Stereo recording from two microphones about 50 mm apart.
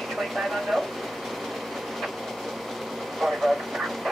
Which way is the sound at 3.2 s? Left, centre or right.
Centre.